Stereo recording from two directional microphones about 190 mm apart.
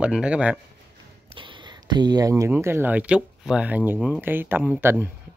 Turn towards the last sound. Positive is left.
turn(degrees=-10)  # may be behind; listen again after turning